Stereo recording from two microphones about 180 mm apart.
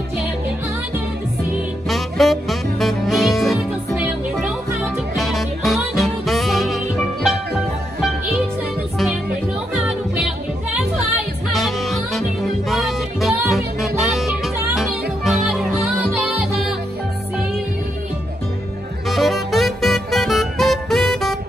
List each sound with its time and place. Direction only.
1.9 s music: centre (ahead or behind)
9.8 s music: 5° right (ahead or behind)
19.0 s music: centre (ahead or behind)